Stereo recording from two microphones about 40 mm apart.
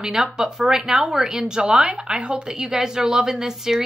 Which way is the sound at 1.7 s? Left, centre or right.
Right.